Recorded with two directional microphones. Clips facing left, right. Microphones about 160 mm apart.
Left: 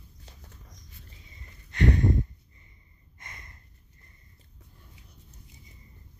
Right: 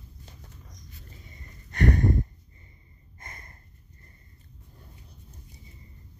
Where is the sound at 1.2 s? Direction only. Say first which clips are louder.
Right 4 dB; 45° right (ahead or behind).